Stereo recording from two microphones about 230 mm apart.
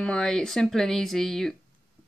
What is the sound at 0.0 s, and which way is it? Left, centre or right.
Speech, centre.